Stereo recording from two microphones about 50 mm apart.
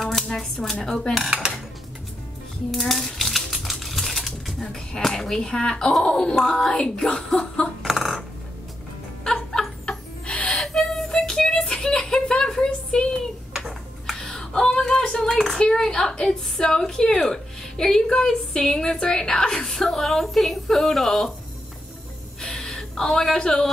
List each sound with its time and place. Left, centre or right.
0.0 s shuffling cards: centre
0.8 s speech: centre
1.4 s dishes: centre
2.7 s typewriter: centre
5.5 s speech: centre
7.2 s chuckle: centre
7.8 s a sound: centre
9.2 s music: centre
10.6 s a sound: centre
22.4 s gasp: centre